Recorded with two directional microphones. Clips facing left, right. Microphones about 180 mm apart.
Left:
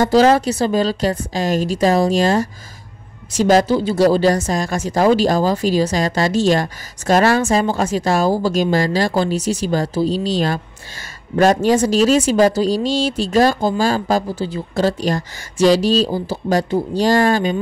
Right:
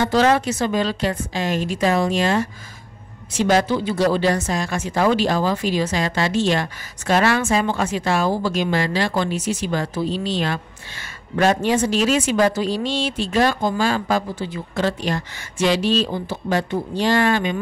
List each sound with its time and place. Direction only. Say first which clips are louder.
0.0 s speech: left 5 dB; 35° left (ahead or behind)